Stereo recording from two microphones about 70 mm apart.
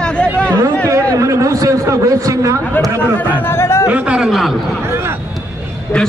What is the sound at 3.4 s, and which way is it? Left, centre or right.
Speech, left.